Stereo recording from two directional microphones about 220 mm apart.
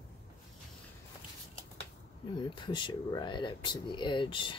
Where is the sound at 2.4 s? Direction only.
20° left (ahead or behind).